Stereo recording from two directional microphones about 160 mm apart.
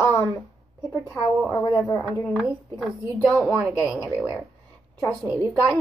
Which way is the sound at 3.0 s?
20° right (ahead or behind).